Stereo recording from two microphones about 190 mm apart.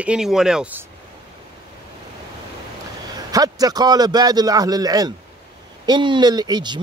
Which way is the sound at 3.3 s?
20° right (ahead or behind).